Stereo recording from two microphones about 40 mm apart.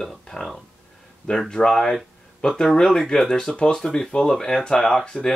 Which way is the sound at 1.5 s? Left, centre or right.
Centre.